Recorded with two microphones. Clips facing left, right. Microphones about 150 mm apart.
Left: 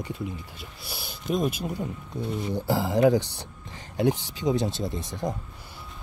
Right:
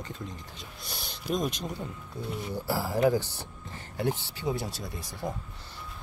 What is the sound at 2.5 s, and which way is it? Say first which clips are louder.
Speech: left 5 dB; 15° left (ahead or behind).